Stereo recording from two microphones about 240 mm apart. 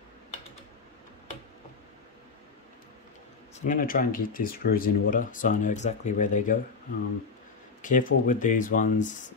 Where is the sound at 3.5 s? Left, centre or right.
Left.